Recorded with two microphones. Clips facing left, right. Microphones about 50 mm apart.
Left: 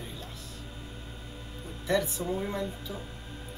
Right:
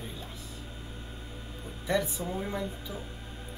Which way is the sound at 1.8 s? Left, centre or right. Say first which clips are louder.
Left 1 dB; centre.